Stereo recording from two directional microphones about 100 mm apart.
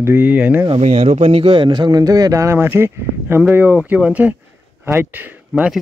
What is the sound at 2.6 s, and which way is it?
Speech, 20° right (ahead or behind).